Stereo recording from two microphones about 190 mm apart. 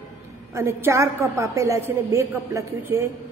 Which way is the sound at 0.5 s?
15° right (ahead or behind).